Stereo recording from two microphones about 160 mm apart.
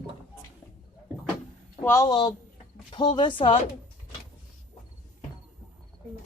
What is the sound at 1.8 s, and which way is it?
A woman's voice, 25° left (ahead or behind).